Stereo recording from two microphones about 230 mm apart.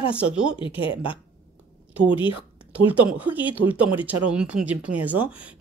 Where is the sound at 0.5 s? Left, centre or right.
Left.